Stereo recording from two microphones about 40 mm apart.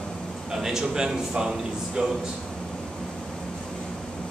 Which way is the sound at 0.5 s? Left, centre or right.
Centre.